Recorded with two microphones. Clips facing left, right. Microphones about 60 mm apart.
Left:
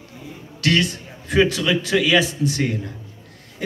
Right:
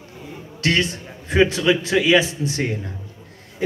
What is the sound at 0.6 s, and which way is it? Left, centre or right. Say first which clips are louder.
A man's voice: left 1 dB; right.